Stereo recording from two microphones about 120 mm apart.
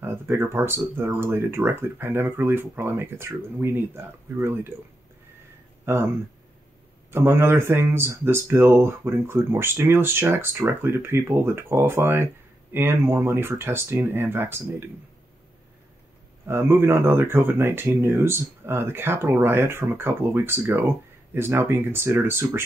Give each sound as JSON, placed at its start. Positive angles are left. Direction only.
{"t": 0.0, "sound": "speech", "side_deg": -20}
{"t": 5.9, "sound": "speech", "side_deg": -20}
{"t": 7.1, "sound": "speech", "side_deg": -20}
{"t": 16.4, "sound": "speech", "side_deg": -20}